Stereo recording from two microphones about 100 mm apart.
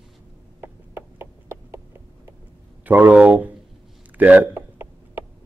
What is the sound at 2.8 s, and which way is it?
Speech, 15° right (ahead or behind).